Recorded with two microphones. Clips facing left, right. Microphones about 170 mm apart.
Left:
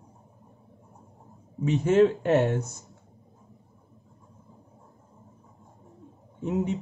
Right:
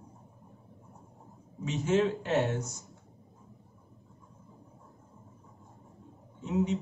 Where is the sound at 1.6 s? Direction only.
55° left (ahead or behind).